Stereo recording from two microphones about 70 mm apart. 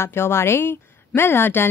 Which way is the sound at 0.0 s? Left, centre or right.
Left.